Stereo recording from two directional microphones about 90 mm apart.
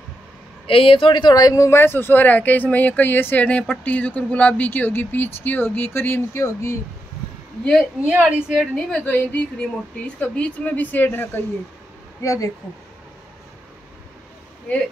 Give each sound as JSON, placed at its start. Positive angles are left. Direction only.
{"t": 0.7, "sound": "speech", "side_deg": 90}
{"t": 8.1, "sound": "a woman's voice", "side_deg": -10}
{"t": 8.5, "sound": "a woman's voice", "side_deg": 10}
{"t": 12.2, "sound": "speech", "side_deg": 40}